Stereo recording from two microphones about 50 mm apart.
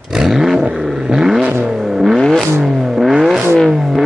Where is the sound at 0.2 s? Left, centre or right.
Centre.